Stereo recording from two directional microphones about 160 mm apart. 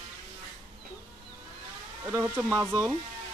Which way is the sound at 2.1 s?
15° right (ahead or behind).